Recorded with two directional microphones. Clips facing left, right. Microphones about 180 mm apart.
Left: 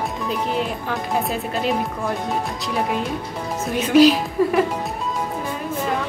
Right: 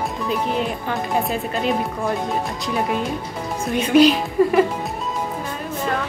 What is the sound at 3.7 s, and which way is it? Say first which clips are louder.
A woman's voice: even; centre (ahead or behind).